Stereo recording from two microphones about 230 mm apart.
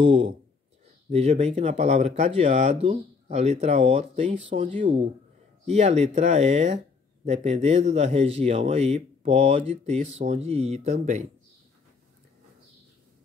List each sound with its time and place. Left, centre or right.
0.0 s a man's voice: right